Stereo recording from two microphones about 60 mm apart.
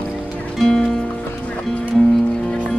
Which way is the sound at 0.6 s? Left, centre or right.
Centre.